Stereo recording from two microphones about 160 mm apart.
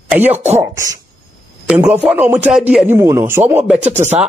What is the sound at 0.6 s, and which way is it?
Cough, 20° right (ahead or behind).